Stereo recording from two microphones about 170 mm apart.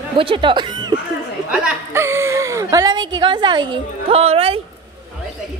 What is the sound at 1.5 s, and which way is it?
A woman's voice, 5° right (ahead or behind).